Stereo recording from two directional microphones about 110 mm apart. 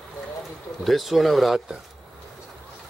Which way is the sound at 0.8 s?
Centre (ahead or behind).